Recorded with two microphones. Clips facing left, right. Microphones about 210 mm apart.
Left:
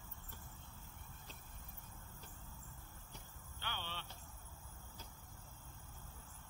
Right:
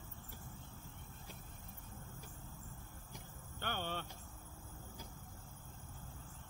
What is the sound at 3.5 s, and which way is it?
Vehicle, 50° right (ahead or behind).